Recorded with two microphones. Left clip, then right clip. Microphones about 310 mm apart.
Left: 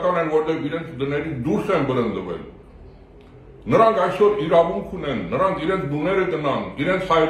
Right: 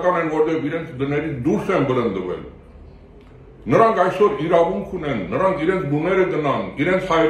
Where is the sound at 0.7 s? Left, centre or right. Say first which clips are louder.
Right 2 dB; centre.